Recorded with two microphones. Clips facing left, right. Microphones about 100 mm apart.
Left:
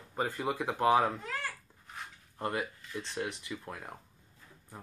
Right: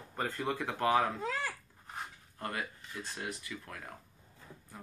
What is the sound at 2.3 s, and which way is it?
Speech, 25° left (ahead or behind).